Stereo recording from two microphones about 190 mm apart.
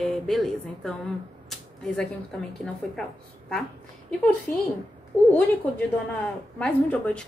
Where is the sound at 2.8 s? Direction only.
5° left (ahead or behind).